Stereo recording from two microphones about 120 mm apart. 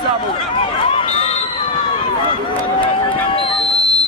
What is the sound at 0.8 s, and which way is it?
Run, 55° left (ahead or behind).